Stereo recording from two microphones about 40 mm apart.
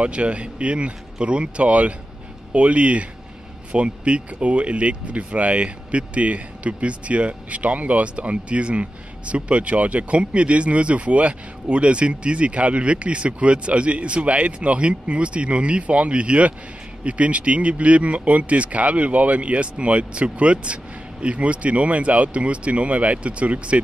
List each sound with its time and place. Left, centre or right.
0.0 s speech: right